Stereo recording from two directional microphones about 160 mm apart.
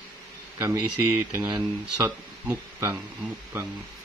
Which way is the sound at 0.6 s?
10° right (ahead or behind).